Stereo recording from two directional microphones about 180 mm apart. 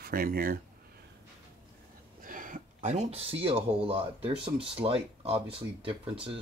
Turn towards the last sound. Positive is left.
turn(degrees=-30)  # may be behind; listen again after turning